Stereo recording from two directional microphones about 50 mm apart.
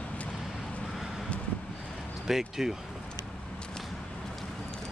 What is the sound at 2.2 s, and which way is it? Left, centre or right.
Speech, centre.